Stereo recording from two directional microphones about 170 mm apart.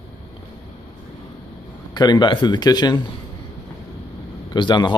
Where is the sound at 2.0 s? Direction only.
25° left (ahead or behind).